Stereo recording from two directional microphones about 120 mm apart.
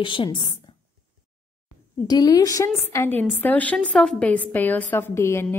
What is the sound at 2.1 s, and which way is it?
A woman's voice, 35° left (ahead or behind).